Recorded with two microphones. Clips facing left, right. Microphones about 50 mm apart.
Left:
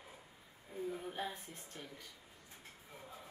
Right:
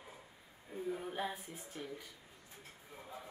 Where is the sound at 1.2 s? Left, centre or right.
Centre.